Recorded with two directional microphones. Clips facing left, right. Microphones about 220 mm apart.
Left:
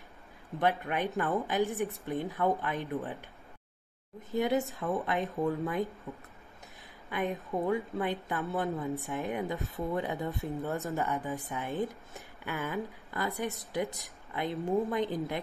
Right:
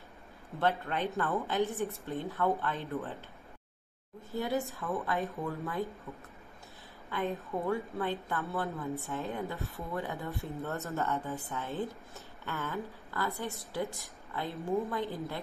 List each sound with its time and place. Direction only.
0.6 s speech: 15° left (ahead or behind)
4.3 s speech: 15° left (ahead or behind)
4.7 s speech: 25° left (ahead or behind)